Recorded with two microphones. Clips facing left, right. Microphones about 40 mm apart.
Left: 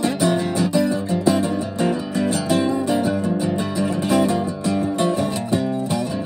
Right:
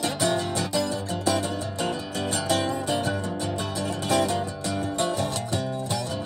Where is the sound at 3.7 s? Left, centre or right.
Left.